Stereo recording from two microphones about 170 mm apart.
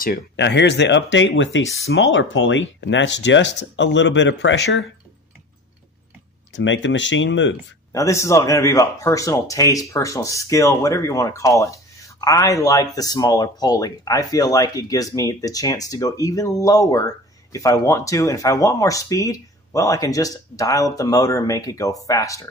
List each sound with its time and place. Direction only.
0.0 s speech: 80° left
6.5 s speech: 90° left
7.9 s speech: 20° left (ahead or behind)